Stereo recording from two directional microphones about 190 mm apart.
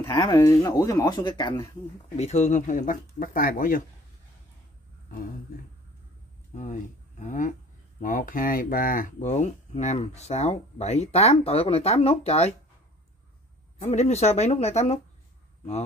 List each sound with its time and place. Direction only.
0.1 s speech: 20° left (ahead or behind)
2.1 s speech: 35° left (ahead or behind)
6.5 s speech: 40° left (ahead or behind)
13.7 s speech: 35° left (ahead or behind)